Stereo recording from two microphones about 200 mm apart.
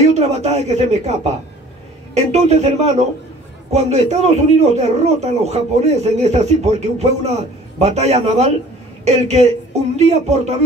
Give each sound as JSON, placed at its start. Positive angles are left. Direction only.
{"t": 0.1, "sound": "a man's voice", "side_deg": -35}